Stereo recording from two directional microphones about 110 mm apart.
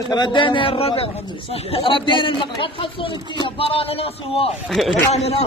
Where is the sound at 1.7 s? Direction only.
50° left (ahead or behind).